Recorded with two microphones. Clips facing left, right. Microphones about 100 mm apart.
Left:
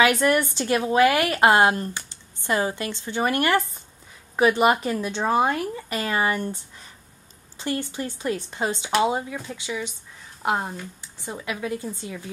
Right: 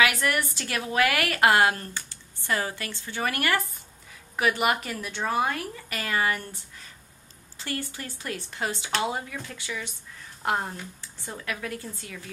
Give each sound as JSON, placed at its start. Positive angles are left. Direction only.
{"t": 0.0, "sound": "a woman's voice", "side_deg": 25}